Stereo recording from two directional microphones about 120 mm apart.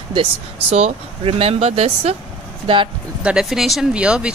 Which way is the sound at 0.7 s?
55° right (ahead or behind).